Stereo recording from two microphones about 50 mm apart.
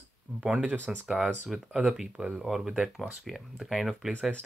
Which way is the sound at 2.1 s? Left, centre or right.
Centre.